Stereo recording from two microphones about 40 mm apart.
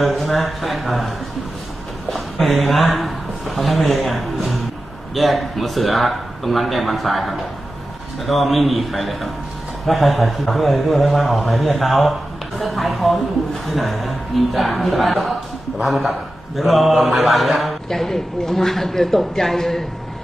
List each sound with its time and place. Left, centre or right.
0.0 s a man's voice: centre
2.4 s a man's voice: centre